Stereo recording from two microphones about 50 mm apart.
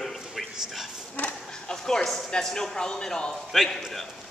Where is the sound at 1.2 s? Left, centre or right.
Left.